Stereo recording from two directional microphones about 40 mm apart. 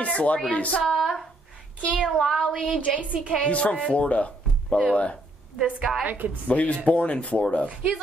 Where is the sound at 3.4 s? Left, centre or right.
Left.